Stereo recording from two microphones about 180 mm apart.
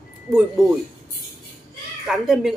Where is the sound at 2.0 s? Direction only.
Centre (ahead or behind).